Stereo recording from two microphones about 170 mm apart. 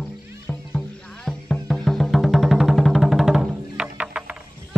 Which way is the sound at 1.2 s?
Centre (ahead or behind).